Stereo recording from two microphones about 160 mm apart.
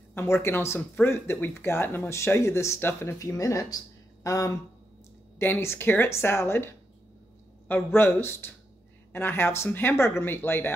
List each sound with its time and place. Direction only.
0.1 s speech: 15° left (ahead or behind)